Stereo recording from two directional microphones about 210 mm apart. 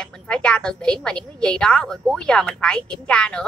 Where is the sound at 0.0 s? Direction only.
5° left (ahead or behind).